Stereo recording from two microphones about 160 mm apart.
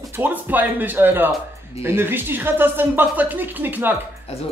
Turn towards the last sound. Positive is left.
turn(degrees=-10)  # may be behind; listen again after turning